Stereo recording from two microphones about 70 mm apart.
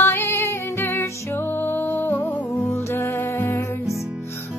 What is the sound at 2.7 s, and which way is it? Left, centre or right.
Music, left.